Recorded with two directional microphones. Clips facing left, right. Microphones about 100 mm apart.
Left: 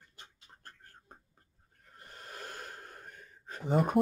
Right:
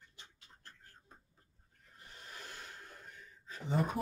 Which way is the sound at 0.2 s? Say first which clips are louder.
Left 5 dB; 50° left (ahead or behind).